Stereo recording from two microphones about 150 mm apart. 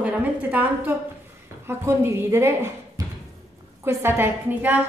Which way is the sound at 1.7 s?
15° right (ahead or behind).